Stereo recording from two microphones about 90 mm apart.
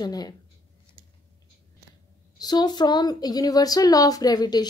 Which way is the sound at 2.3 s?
50° left (ahead or behind).